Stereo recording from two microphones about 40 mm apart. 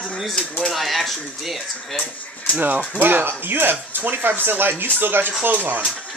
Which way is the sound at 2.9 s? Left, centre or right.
Right.